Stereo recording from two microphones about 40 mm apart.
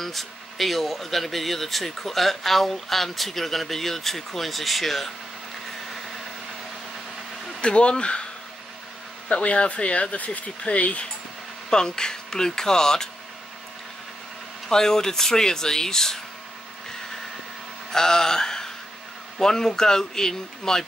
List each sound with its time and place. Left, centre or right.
0.0 s speech: centre
7.6 s speech: left
9.3 s speech: left
11.7 s speech: centre
14.7 s speech: centre
17.9 s mantra: centre
19.3 s speech: centre